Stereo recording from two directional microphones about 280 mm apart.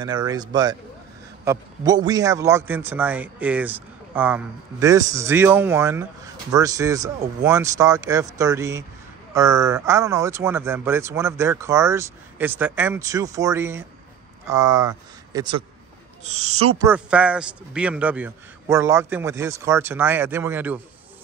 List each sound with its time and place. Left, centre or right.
0.0 s a man's voice: centre
16.3 s speech: right
16.8 s a man's voice: centre